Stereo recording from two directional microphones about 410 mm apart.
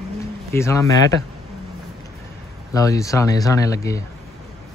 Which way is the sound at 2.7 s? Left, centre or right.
Centre.